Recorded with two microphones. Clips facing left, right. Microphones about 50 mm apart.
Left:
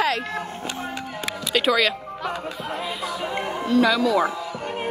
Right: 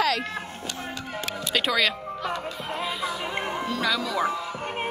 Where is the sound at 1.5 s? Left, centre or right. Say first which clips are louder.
Left 4 dB; centre.